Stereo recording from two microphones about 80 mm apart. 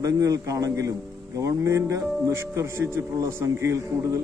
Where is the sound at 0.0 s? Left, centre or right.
Right.